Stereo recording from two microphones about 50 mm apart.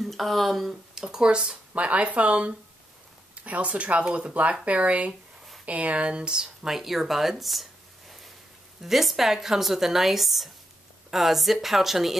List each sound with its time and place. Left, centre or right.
0.0 s speech: centre
6.7 s speech: centre
8.8 s speech: centre